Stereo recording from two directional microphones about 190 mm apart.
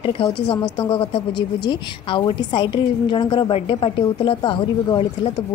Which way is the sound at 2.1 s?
25° left (ahead or behind).